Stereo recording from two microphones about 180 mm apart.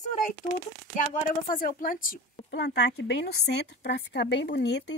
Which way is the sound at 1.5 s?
50° left (ahead or behind).